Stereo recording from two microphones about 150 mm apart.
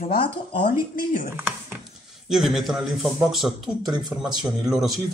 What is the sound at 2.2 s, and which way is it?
Speech, centre (ahead or behind).